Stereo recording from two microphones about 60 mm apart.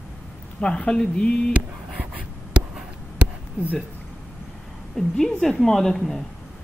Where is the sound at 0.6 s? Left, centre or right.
Centre.